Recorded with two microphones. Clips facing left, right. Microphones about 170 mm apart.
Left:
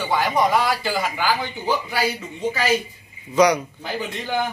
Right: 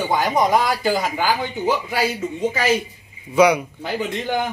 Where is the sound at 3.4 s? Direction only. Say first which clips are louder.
Right 2 dB; 10° right (ahead or behind).